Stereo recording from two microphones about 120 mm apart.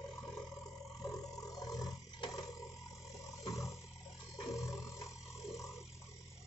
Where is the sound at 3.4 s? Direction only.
25° left (ahead or behind).